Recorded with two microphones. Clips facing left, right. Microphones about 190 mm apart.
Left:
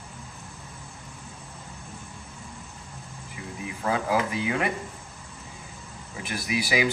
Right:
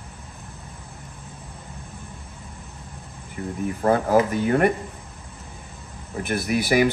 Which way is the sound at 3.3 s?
50° right (ahead or behind).